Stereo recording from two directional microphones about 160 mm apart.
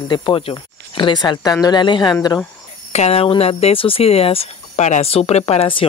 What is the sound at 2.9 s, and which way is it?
Speech, 40° left (ahead or behind).